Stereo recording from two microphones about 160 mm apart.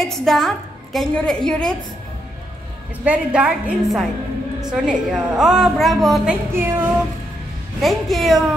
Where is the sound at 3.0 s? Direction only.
5° right (ahead or behind).